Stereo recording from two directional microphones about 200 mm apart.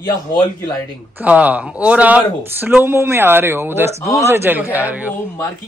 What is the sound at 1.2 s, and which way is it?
Speech, 5° right (ahead or behind).